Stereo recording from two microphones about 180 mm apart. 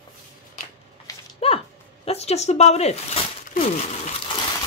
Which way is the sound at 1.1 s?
20° left (ahead or behind).